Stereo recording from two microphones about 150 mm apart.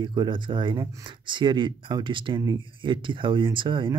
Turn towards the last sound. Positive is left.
turn(degrees=-35)  # may be behind; listen again after turning